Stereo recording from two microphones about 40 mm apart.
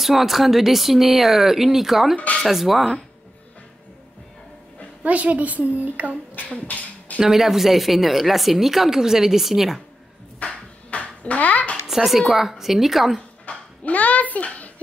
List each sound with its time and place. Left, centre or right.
0.0 s speech: centre
5.0 s a woman's voice: right
6.5 s a sound: left
7.2 s a woman's voice: centre
10.4 s a sound: left
11.9 s a woman's voice: centre
13.5 s babbling: left
13.8 s a child's voice: left